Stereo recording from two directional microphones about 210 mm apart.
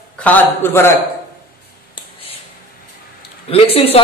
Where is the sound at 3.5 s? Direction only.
30° left (ahead or behind).